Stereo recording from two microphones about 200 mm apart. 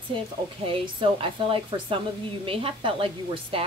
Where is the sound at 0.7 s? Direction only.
25° right (ahead or behind).